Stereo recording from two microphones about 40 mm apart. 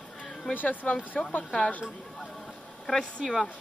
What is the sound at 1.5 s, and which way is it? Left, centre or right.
Speech, left.